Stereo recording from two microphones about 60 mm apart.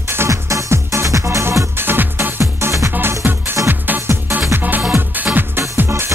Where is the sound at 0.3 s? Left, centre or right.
Right.